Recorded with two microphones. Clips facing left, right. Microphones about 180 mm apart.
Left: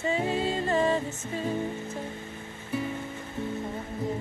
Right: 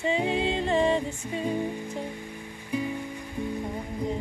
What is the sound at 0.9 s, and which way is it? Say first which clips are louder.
Music: right 2 dB; 15° right (ahead or behind).